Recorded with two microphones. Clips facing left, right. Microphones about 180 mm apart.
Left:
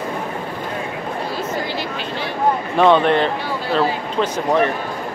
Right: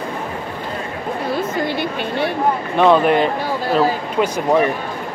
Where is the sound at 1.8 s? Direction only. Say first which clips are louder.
Right 5 dB; 60° right (ahead or behind).